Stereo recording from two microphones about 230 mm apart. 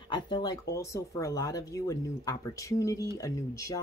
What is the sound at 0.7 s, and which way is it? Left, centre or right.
Speech, centre.